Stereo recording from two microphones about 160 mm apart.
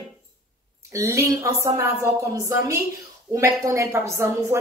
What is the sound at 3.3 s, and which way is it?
A woman's voice, 20° right (ahead or behind).